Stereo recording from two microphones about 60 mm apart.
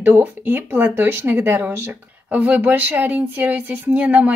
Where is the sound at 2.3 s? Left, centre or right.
Right.